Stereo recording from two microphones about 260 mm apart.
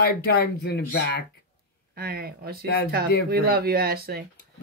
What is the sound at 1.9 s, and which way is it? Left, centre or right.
A woman's voice, right.